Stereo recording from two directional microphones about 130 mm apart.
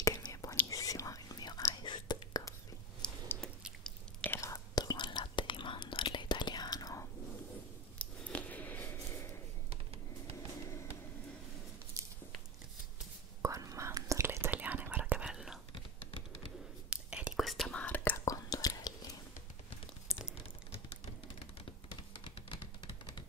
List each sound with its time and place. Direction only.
0.0 s whispering: 25° left (ahead or behind)
3.0 s a sound: 5° left (ahead or behind)
3.8 s whispering: 10° left (ahead or behind)
4.4 s whispering: 25° left (ahead or behind)
8.0 s a sound: 10° left (ahead or behind)
13.4 s whispering: 25° right (ahead or behind); by 15.6 s 5° right (ahead or behind)
15.7 s typing: 45° left (ahead or behind)
16.9 s whispering: 5° right (ahead or behind)
17.6 s whispering: 10° left (ahead or behind)
18.2 s whispering: 25° left (ahead or behind)
22.1 s computer keyboard: 45° left (ahead or behind)